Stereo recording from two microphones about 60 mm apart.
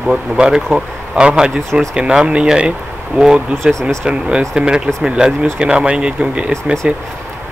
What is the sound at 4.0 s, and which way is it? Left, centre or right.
Speech, centre.